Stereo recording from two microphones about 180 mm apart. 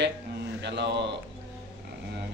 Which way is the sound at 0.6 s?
75° right (ahead or behind).